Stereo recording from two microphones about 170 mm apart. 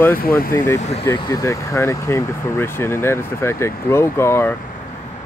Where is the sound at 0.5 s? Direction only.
15° left (ahead or behind).